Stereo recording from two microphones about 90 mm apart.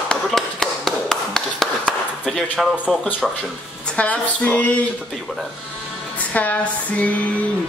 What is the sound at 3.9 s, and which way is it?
Speech, 15° left (ahead or behind).